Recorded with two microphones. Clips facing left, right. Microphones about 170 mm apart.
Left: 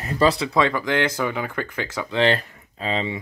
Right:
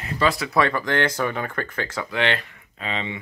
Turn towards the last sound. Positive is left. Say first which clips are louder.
# left 4 dB
turn(degrees=35)  # may be behind; listen again after turning